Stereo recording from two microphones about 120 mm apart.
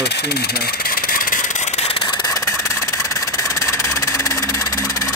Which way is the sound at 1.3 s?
75° left (ahead or behind).